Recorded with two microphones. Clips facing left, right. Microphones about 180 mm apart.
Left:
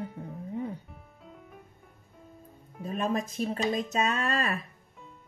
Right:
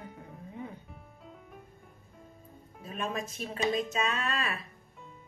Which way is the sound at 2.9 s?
40° left (ahead or behind).